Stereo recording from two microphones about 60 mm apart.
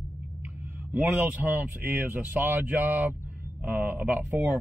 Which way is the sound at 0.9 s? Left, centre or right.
Right.